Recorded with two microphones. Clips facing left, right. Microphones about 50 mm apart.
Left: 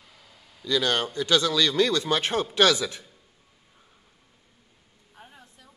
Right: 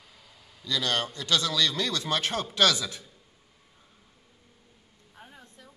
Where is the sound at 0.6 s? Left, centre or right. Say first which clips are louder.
Left 4 dB; left.